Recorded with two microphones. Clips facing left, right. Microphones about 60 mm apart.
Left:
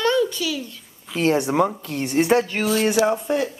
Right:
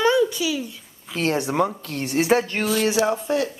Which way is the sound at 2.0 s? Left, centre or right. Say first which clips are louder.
Left 1 dB; centre.